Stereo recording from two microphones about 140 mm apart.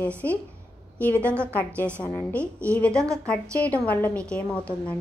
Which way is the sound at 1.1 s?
15° right (ahead or behind).